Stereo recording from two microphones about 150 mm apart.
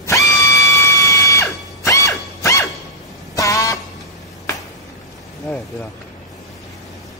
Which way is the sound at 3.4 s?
20° left (ahead or behind).